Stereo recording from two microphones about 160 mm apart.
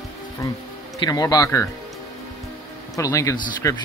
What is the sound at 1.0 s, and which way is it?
Speech, 25° left (ahead or behind).